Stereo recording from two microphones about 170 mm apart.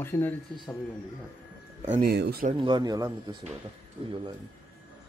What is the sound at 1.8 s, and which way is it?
Speech, 45° right (ahead or behind).